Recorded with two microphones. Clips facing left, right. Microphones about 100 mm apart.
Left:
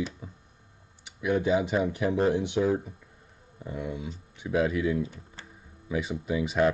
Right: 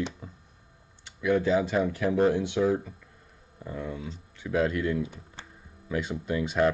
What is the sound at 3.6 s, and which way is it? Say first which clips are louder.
Speech: left 1 dB; 15° left (ahead or behind).